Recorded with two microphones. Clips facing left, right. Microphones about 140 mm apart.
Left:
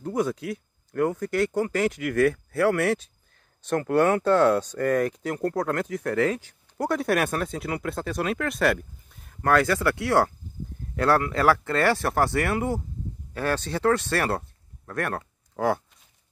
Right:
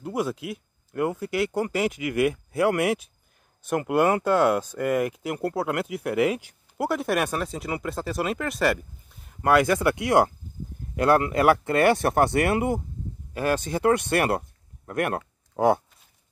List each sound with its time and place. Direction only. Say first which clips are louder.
0.0 s speech: left 2 dB; 5° right (ahead or behind)
9.4 s speech: right 2 dB; 10° right (ahead or behind)